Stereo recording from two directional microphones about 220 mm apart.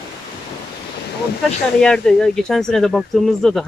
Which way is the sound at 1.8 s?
5° left (ahead or behind).